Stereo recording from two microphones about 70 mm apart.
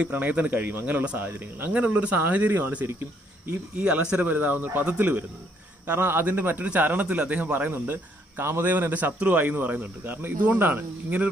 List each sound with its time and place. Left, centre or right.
0.0 s speech: right